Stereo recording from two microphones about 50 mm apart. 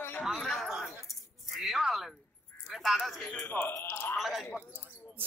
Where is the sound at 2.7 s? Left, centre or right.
Centre.